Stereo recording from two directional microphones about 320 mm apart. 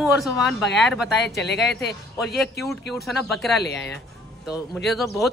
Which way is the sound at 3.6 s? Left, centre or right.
Left.